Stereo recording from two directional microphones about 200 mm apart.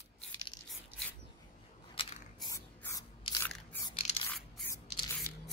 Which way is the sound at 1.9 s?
20° left (ahead or behind).